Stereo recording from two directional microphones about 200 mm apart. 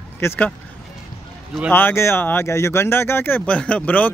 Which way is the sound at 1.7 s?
10° left (ahead or behind).